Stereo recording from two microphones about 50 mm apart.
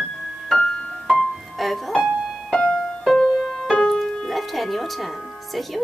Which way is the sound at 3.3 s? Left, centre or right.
Centre.